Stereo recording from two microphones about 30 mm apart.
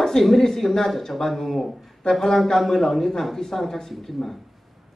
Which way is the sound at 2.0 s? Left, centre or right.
Centre.